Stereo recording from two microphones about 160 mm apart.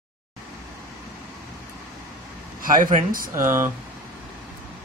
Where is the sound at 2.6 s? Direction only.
55° right (ahead or behind).